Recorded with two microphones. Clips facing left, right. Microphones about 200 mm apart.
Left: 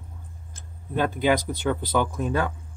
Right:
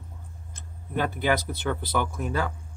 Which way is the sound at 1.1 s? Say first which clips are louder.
Left 4 dB; 15° left (ahead or behind).